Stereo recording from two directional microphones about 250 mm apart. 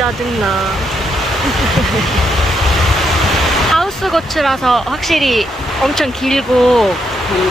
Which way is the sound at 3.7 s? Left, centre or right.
Centre.